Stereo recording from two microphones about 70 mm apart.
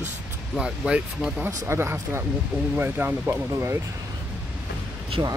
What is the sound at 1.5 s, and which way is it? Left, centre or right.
Speech, right.